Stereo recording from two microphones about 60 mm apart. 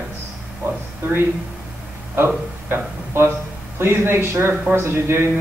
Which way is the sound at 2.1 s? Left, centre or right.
Right.